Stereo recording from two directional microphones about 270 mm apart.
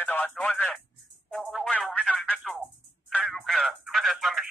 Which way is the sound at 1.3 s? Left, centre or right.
Centre.